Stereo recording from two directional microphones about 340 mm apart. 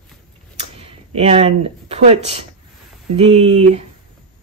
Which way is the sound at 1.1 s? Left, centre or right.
Centre.